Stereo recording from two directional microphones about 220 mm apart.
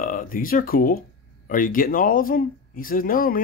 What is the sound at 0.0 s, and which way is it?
Speech, 40° left (ahead or behind).